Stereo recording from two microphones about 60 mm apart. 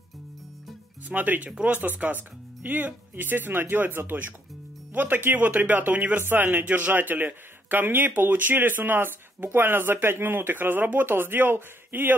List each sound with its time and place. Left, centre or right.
1.0 s a man's voice: right